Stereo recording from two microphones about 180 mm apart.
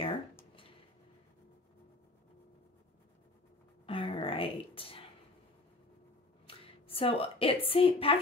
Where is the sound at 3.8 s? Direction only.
30° left (ahead or behind).